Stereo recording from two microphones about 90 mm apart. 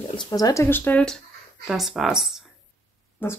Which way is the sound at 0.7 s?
20° left (ahead or behind).